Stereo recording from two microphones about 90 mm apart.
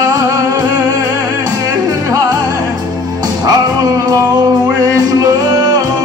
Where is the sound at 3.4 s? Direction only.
45° right (ahead or behind).